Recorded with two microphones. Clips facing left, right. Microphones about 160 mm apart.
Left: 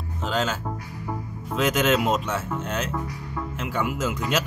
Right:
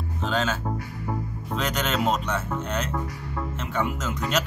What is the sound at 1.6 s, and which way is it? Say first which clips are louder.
Speech: left 5 dB; 10° left (ahead or behind).